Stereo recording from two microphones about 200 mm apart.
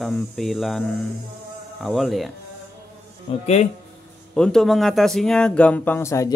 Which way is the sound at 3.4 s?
30° left (ahead or behind).